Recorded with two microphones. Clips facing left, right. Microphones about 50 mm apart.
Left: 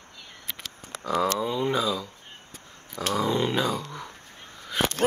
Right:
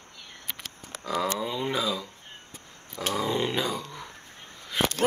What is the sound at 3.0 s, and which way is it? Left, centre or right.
Speech, centre.